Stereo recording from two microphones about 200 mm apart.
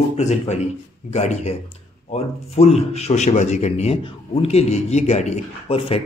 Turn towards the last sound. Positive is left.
turn(degrees=30)  # may be behind; listen again after turning